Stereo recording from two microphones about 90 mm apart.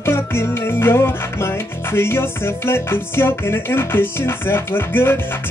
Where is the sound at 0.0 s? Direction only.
25° left (ahead or behind).